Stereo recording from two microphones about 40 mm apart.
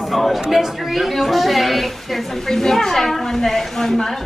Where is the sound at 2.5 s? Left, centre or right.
Centre.